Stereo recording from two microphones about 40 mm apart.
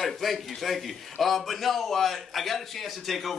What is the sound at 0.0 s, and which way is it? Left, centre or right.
A man's voice, centre.